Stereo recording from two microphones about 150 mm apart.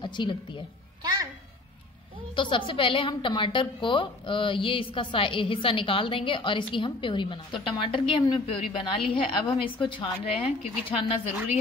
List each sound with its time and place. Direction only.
0.0 s speech: 30° left (ahead or behind)
1.0 s babbling: 25° right (ahead or behind)
2.3 s a woman's voice: 35° left (ahead or behind)